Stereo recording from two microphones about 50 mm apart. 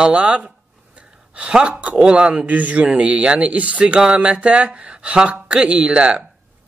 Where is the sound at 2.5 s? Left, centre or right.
Right.